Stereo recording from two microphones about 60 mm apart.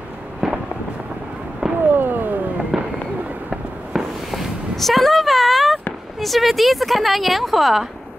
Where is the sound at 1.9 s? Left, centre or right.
Right.